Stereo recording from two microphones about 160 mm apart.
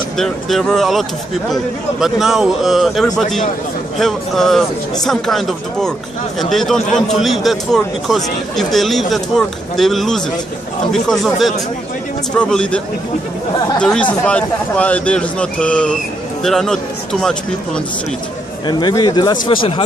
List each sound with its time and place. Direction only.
0.2 s a man's voice: centre (ahead or behind)
18.7 s speech: 25° left (ahead or behind)